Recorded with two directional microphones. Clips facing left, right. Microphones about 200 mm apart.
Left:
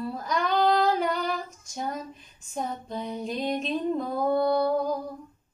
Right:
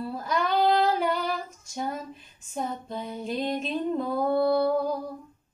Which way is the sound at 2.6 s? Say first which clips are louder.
Even; 5° right (ahead or behind).